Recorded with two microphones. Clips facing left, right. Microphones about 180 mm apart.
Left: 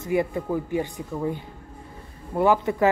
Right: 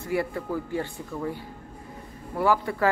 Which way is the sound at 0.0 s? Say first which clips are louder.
Left 4 dB; 20° left (ahead or behind).